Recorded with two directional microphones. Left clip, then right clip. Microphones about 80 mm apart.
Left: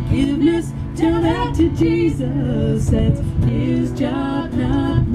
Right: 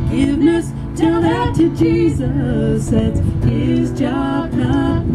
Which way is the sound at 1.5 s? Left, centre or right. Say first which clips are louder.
Right 2 dB; centre.